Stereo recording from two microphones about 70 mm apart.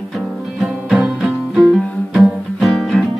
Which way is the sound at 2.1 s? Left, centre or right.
Centre.